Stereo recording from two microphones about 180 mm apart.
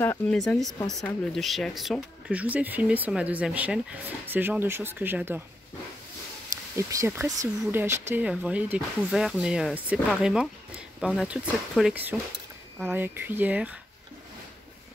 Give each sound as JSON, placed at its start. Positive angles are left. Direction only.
{"t": 0.0, "sound": "speech", "side_deg": 15}
{"t": 0.4, "sound": "speech", "side_deg": 0}
{"t": 6.8, "sound": "speech", "side_deg": -15}